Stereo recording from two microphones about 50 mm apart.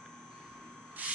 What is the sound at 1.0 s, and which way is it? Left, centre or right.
Rub, right.